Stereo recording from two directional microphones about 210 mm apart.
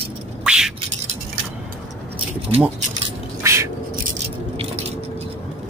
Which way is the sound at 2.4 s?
30° right (ahead or behind).